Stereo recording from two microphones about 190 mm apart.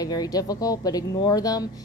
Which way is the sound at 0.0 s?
20° left (ahead or behind).